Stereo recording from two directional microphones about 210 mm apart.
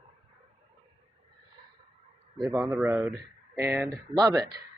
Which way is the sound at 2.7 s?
10° right (ahead or behind).